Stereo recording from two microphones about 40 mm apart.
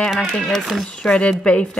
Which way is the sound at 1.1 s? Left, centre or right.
Left.